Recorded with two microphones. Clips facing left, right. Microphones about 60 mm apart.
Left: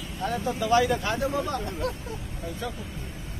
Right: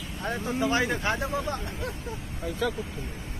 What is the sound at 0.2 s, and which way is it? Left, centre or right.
Speech, right.